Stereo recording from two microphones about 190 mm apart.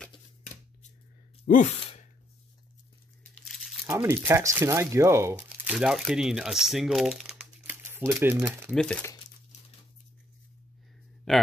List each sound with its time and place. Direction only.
1.4 s sigh: 40° left (ahead or behind)
3.3 s tearing: 5° left (ahead or behind)
3.8 s speech: 15° right (ahead or behind)
8.7 s speech: 5° left (ahead or behind)